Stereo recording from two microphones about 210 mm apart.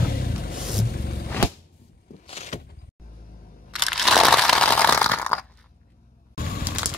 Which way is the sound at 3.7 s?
Centre (ahead or behind).